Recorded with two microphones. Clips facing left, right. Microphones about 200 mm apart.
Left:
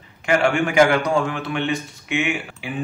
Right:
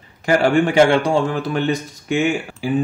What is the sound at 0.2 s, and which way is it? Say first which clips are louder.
A man's voice: right 4 dB; 35° right (ahead or behind).